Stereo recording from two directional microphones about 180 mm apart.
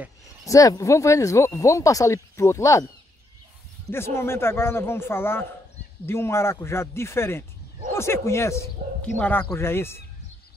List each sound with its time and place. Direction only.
0.5 s speech: 20° left (ahead or behind)
3.9 s speech: 15° left (ahead or behind)